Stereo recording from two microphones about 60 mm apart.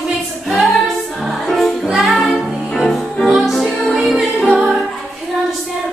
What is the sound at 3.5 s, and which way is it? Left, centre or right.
Music, centre.